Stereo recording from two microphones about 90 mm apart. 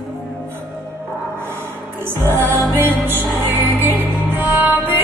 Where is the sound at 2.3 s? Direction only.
25° right (ahead or behind).